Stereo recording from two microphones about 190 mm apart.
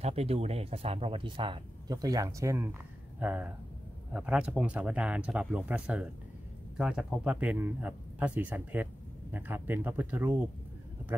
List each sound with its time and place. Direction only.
0.0 s speech: 35° right (ahead or behind); by 10.3 s 10° right (ahead or behind)